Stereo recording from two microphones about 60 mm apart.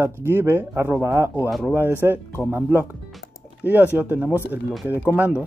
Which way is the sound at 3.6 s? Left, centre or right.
Right.